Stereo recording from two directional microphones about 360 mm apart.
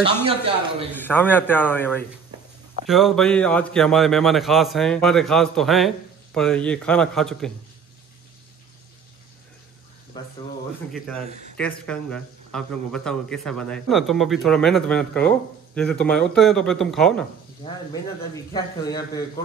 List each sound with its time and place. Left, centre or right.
0.3 s speech: centre
0.9 s speech: centre
11.5 s speech: centre
18.3 s speech: centre